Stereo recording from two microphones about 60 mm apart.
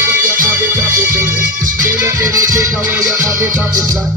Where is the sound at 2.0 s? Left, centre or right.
Right.